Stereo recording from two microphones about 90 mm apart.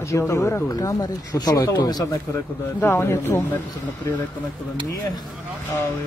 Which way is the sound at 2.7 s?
25° left (ahead or behind).